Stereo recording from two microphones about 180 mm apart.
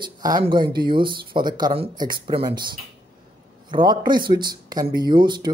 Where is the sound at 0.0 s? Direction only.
25° right (ahead or behind).